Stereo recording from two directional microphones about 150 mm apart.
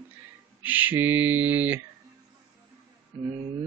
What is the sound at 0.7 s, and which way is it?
Speech, 10° right (ahead or behind).